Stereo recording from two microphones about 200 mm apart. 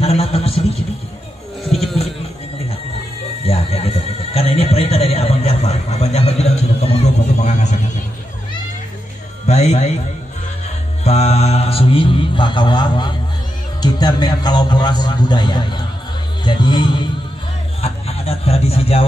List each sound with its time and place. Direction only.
0.0 s vehicle: 30° left (ahead or behind)
1.7 s a sound: centre (ahead or behind)
3.4 s neigh: 30° left (ahead or behind)
9.5 s music: 35° left (ahead or behind)
11.1 s mantra: 30° left (ahead or behind)
13.7 s a man's voice: 20° left (ahead or behind)
16.4 s music: 25° left (ahead or behind)
17.8 s a sound: 30° left (ahead or behind)